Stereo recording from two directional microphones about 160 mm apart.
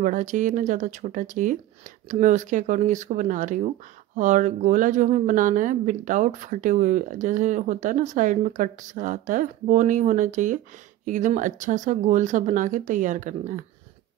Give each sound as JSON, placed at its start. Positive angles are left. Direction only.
{"t": 0.0, "sound": "speech", "side_deg": -55}